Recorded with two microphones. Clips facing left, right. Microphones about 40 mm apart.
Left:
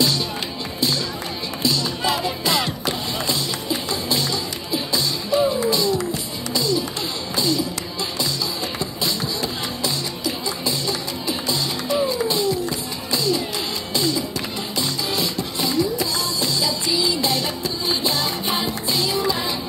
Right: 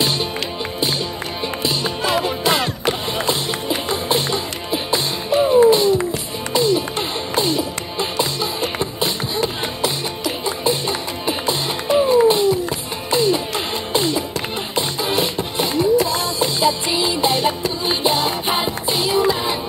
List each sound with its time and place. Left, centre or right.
1.6 s music: right